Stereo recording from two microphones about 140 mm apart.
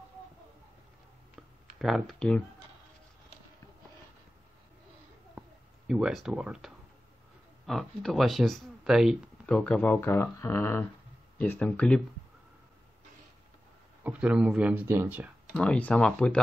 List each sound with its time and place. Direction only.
1.8 s speech: centre (ahead or behind)
5.9 s speech: 5° right (ahead or behind)
9.5 s speech: 10° left (ahead or behind)
14.0 s speech: 10° right (ahead or behind)
15.5 s speech: 10° left (ahead or behind)